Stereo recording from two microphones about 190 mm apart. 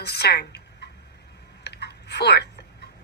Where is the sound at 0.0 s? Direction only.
60° left (ahead or behind).